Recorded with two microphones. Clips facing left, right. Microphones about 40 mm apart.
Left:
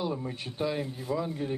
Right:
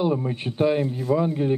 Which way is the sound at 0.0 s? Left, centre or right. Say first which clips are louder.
Right 9 dB; right.